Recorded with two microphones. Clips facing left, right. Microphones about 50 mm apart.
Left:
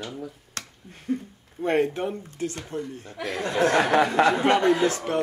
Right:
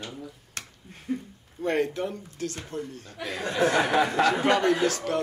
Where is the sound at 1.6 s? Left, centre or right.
Left.